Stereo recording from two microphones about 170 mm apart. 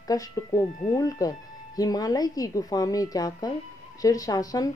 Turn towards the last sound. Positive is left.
turn(degrees=20)  # may be behind; listen again after turning